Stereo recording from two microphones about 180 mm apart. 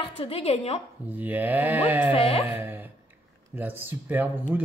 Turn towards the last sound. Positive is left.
turn(degrees=-10)  # may be behind; listen again after turning